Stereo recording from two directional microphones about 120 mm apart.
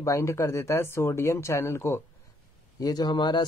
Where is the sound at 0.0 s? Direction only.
25° left (ahead or behind).